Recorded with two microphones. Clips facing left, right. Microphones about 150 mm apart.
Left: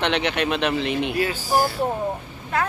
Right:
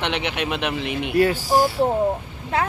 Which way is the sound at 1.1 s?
55° right (ahead or behind).